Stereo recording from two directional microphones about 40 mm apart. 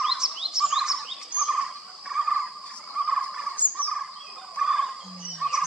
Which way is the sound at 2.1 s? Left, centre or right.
Centre.